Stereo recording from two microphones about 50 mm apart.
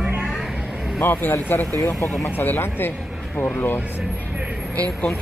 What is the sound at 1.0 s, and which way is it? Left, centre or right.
Speech, left.